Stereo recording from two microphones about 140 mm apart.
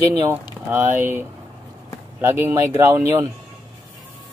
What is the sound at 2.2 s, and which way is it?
Speech, 15° right (ahead or behind).